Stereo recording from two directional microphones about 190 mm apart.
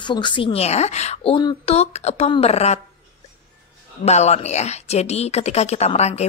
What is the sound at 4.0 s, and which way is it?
A woman's voice, 35° left (ahead or behind).